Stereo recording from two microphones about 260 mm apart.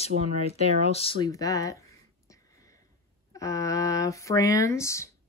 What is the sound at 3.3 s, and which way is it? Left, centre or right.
Speech, centre.